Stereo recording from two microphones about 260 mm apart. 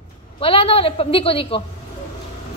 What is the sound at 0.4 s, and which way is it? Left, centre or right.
A woman's voice, left.